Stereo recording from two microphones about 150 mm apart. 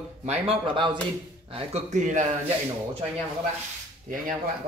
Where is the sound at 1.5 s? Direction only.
50° right (ahead or behind).